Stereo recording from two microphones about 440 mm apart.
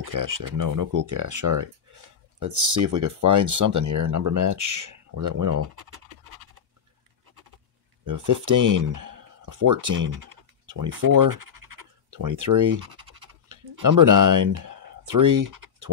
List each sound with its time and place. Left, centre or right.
0.0 s speech: right
8.0 s speech: right
10.0 s scratch: right